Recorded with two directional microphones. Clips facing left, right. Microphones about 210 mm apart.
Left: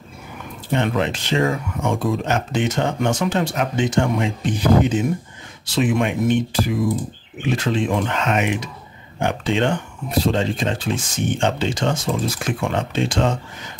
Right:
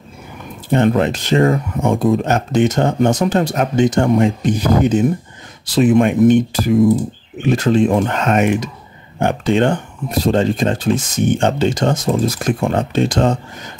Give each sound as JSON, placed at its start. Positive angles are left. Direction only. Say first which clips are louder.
{"t": 0.7, "sound": "speech", "louder": "right 6 dB", "side_deg": -45}